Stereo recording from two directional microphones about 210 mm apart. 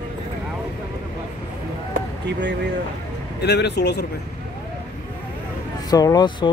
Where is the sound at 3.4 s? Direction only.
55° left (ahead or behind).